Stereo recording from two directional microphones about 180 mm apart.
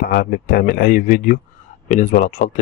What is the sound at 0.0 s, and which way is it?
Speech, 50° left (ahead or behind).